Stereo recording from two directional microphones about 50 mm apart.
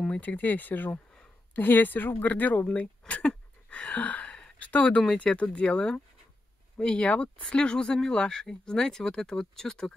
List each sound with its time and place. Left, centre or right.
0.2 s speech: left
3.7 s a sound: left
4.6 s speech: left; by 9.9 s centre